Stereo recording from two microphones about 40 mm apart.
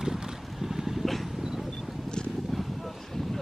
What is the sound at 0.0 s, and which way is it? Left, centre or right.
Boat, centre.